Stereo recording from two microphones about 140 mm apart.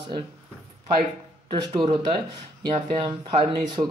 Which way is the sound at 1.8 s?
35° right (ahead or behind).